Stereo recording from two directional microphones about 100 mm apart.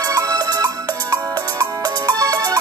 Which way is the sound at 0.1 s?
35° right (ahead or behind).